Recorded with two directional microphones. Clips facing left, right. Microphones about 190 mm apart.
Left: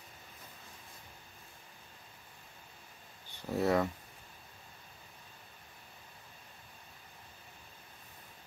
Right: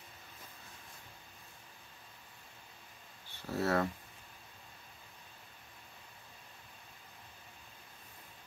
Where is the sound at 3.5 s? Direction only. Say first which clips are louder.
Left 3 dB; 15° left (ahead or behind).